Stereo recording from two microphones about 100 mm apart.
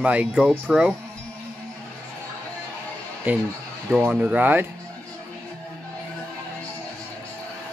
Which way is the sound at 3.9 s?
15° right (ahead or behind).